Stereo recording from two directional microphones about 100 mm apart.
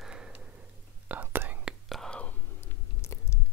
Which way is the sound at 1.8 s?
5° left (ahead or behind).